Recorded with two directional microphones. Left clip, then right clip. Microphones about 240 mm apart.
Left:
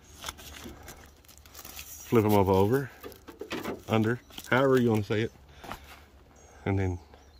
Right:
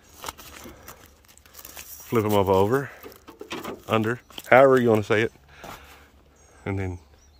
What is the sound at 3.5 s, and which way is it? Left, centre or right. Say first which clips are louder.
Pigeon: right 2 dB; right.